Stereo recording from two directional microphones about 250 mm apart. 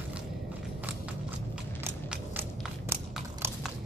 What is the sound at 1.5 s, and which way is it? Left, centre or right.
Biting, centre.